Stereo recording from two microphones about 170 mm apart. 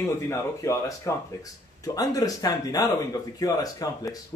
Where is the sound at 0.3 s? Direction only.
20° left (ahead or behind).